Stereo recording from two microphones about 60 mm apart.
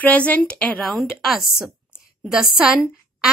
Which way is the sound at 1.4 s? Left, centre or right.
Centre.